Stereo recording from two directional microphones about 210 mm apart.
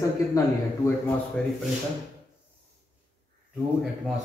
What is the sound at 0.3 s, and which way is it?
A man's voice, 15° left (ahead or behind).